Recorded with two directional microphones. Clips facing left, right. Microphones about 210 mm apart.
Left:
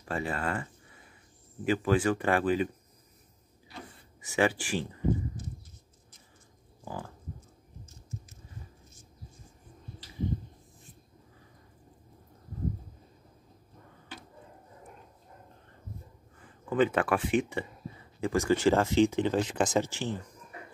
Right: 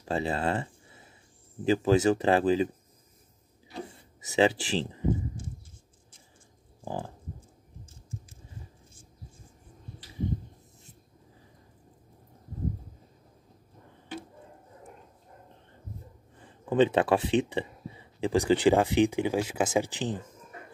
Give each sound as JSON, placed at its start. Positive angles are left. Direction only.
{"t": 0.0, "sound": "speech", "side_deg": -25}
{"t": 3.7, "sound": "speech", "side_deg": -25}
{"t": 6.8, "sound": "a sound", "side_deg": -30}
{"t": 16.3, "sound": "speech", "side_deg": -25}